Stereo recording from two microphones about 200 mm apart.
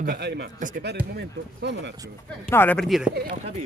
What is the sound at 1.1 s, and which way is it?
Speech, 60° right (ahead or behind).